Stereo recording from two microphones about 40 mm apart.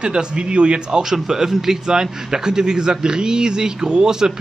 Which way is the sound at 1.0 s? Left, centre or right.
Centre.